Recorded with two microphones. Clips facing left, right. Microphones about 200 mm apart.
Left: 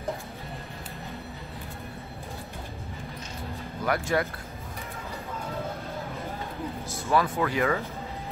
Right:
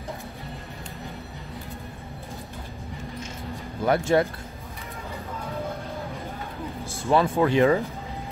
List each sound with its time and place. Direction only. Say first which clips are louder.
3.8 s speech: right 6 dB; 25° right (ahead or behind)
6.9 s speech: right 4 dB; 30° right (ahead or behind)